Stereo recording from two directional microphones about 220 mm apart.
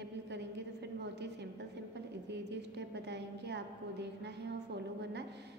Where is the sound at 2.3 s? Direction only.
50° right (ahead or behind).